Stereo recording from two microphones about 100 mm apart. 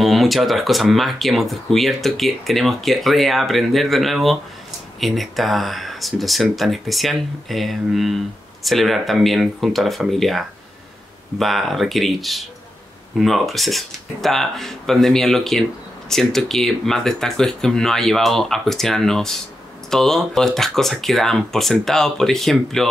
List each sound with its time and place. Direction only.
0.0 s speech: centre (ahead or behind)